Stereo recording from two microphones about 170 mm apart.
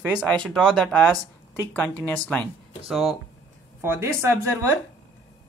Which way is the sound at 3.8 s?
15° right (ahead or behind).